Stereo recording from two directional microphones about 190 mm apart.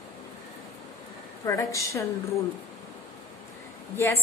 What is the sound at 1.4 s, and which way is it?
Speech, 15° left (ahead or behind).